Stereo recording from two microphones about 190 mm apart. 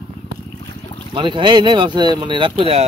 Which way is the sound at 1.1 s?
25° right (ahead or behind).